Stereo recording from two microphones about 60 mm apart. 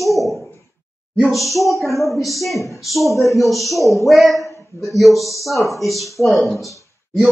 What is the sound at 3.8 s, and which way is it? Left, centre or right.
Speech, left.